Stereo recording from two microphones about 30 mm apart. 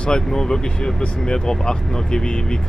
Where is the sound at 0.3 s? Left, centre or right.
Centre.